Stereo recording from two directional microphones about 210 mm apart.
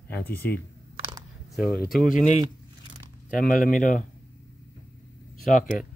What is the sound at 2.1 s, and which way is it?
Speech, 35° left (ahead or behind).